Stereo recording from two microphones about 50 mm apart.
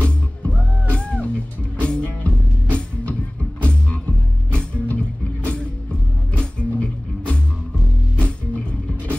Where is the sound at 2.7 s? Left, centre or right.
Left.